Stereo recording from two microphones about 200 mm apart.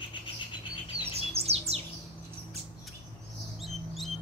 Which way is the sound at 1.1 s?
30° right (ahead or behind).